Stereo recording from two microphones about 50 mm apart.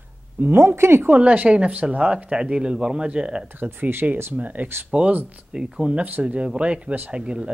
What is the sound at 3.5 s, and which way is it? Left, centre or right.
Speech, right.